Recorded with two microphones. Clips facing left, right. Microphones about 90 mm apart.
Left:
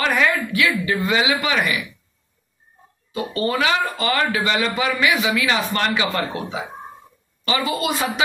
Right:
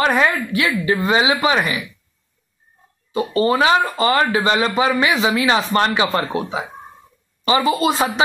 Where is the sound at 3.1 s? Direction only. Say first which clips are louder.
Right 5 dB; 30° right (ahead or behind).